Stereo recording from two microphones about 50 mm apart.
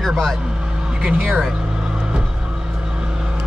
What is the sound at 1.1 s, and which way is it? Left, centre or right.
Speech, right.